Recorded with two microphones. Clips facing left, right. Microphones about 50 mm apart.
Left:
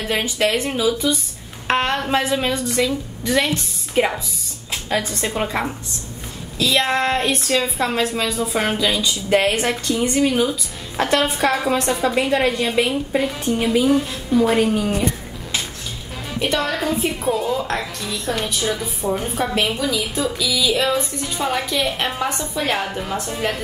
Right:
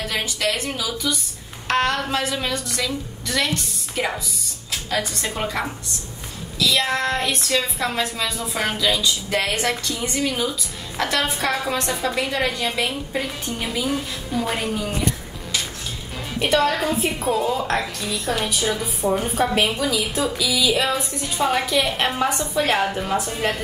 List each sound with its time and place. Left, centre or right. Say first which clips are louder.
0.1 s a woman's voice: left 6 dB; left
6.6 s a woman's voice: left 2 dB; left
13.1 s a woman's voice: left 6 dB; centre
13.8 s a woman's voice: left 7 dB; centre
14.6 s speech: left 7 dB; left
16.5 s a woman's voice: right 3 dB; centre